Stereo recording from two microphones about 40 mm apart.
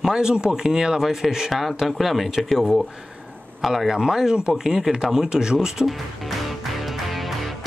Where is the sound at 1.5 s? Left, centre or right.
Centre.